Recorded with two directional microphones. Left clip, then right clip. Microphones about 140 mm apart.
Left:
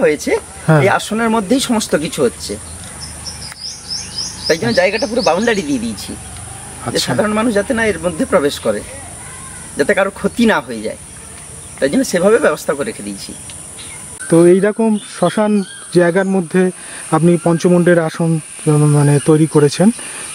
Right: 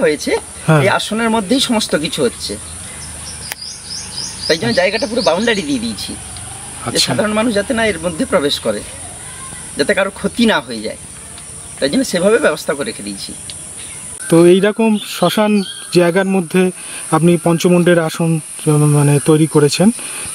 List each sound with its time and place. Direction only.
0.0 s speech: 5° left (ahead or behind)
4.5 s speech: 5° left (ahead or behind)
14.3 s speech: 20° right (ahead or behind)